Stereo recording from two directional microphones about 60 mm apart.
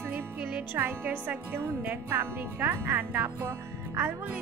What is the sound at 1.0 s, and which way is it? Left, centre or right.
A woman's voice, right.